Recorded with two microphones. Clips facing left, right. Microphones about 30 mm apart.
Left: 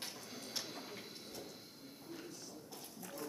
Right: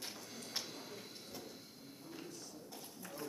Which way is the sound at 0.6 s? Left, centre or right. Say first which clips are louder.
Left 1 dB; centre.